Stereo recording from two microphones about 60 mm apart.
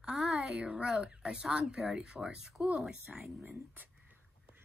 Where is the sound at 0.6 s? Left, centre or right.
Centre.